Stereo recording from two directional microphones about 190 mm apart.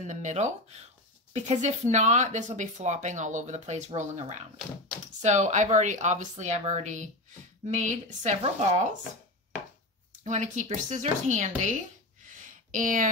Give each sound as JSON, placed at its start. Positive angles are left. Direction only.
{"t": 0.0, "sound": "speech", "side_deg": -40}
{"t": 10.2, "sound": "speech", "side_deg": -40}
{"t": 12.7, "sound": "speech", "side_deg": -45}